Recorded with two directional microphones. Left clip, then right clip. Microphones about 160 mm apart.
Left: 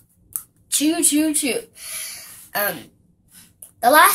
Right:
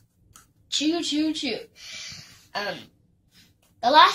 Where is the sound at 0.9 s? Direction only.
25° left (ahead or behind).